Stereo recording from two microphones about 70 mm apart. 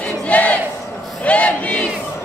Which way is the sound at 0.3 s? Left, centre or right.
Centre.